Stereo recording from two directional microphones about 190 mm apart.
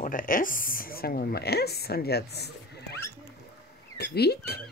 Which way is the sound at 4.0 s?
60° left (ahead or behind).